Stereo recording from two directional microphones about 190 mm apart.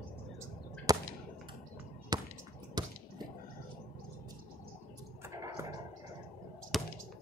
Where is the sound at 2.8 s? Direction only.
20° right (ahead or behind).